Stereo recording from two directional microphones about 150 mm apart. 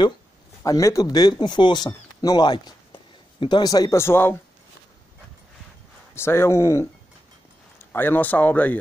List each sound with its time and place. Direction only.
0.7 s speech: 20° left (ahead or behind)
6.1 s speech: 15° left (ahead or behind)